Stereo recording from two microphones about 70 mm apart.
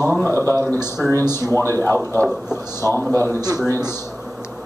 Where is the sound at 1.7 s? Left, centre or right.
Left.